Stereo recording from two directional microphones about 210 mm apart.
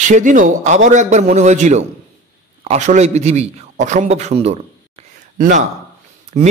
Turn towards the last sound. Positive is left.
turn(degrees=-35)  # may be behind; listen again after turning